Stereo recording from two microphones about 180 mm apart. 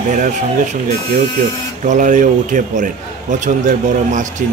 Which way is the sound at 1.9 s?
45° right (ahead or behind).